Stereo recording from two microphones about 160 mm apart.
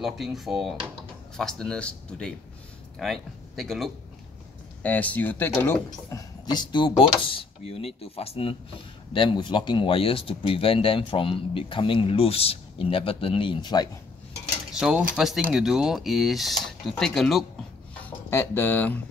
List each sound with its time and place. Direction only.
0.0 s speech: centre (ahead or behind); by 13.8 s 25° left (ahead or behind)
14.7 s cutlery: 5° right (ahead or behind)
15.1 s speech: centre (ahead or behind)
18.0 s speech: 15° left (ahead or behind)